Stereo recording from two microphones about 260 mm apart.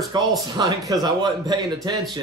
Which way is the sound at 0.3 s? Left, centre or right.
Centre.